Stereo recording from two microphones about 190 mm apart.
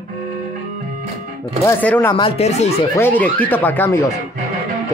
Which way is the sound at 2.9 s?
10° left (ahead or behind).